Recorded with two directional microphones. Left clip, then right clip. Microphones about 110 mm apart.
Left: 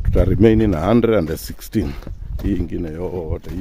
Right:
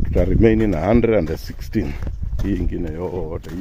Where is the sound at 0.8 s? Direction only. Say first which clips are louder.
Even; 45° left (ahead or behind).